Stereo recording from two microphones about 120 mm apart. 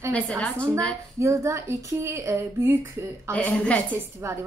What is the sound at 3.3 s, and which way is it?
Speech, 10° left (ahead or behind).